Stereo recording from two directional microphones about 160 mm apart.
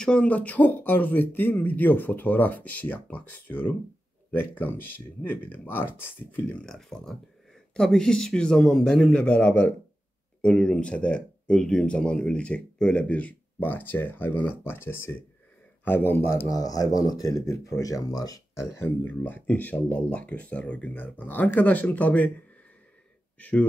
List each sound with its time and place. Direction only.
0.0 s a man's voice: 5° left (ahead or behind)
23.3 s speech: 10° left (ahead or behind)